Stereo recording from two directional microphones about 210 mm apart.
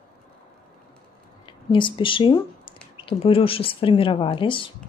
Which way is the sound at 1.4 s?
25° left (ahead or behind).